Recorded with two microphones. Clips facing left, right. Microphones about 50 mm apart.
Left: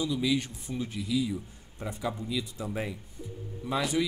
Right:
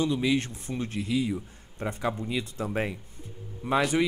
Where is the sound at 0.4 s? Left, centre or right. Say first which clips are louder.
Right 2 dB; right.